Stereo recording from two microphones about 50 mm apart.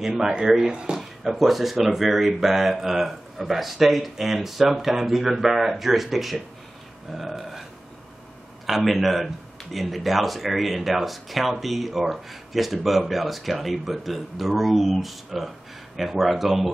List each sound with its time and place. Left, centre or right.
0.0 s speech: centre
1.2 s a man's voice: centre
7.2 s burping: centre
8.6 s a man's voice: centre